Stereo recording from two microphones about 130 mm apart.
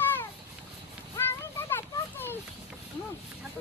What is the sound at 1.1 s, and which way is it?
Children playing, 15° left (ahead or behind).